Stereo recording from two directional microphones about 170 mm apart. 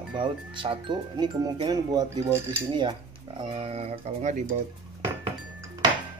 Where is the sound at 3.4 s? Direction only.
30° right (ahead or behind).